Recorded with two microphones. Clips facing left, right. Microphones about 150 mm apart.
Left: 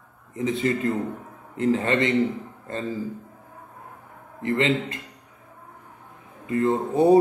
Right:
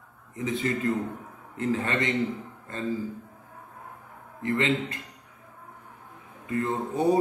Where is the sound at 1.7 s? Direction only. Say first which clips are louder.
Left 5 dB; 30° left (ahead or behind).